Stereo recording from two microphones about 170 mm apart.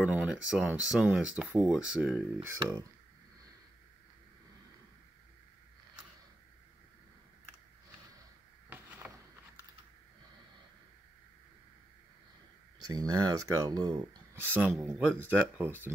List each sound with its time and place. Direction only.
0.0 s speech: 5° right (ahead or behind)
12.7 s speech: 20° right (ahead or behind)
14.4 s speech: 10° right (ahead or behind)